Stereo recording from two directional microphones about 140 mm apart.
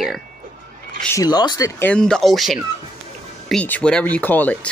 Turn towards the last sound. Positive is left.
turn(degrees=10)  # may be behind; listen again after turning